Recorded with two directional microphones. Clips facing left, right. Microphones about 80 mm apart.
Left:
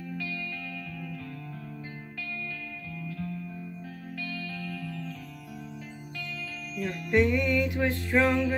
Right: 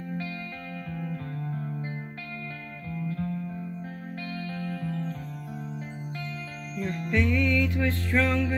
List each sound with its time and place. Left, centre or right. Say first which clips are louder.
3.0 s music: right 6 dB; right
4.8 s music: right 5 dB; right
6.8 s music: right 2 dB; right
7.1 s music: left 2 dB; centre